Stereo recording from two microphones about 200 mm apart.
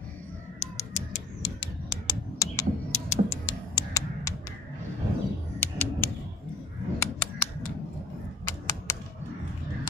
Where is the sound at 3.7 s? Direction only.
15° left (ahead or behind).